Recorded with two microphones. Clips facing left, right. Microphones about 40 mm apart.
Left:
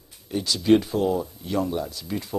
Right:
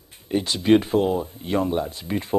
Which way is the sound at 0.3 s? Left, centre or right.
Right.